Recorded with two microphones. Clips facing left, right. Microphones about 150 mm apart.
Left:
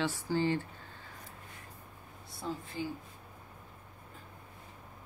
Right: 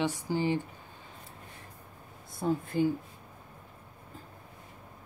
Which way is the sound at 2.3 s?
50° right (ahead or behind).